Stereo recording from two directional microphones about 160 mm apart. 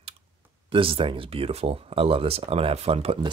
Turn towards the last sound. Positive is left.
turn(degrees=-35)  # may be behind; listen again after turning